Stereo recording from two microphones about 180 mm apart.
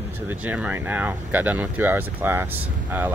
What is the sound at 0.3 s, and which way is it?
Speech, 10° right (ahead or behind).